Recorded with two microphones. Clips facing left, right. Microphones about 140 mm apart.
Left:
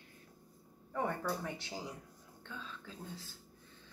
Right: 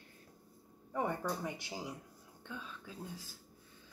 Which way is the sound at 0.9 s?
15° right (ahead or behind).